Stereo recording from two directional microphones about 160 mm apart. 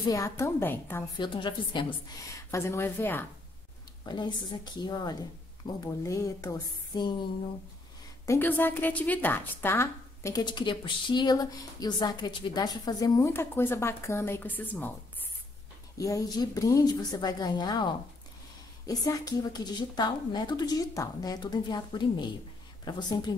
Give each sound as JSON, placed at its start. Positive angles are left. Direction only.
{"t": 0.1, "sound": "a woman's voice", "side_deg": 20}
{"t": 1.1, "sound": "a woman's voice", "side_deg": 30}
{"t": 2.5, "sound": "a woman's voice", "side_deg": 15}
{"t": 4.0, "sound": "a woman's voice", "side_deg": 25}
{"t": 8.3, "sound": "a woman's voice", "side_deg": 15}
{"t": 16.0, "sound": "a woman's voice", "side_deg": 20}
{"t": 18.9, "sound": "a woman's voice", "side_deg": 25}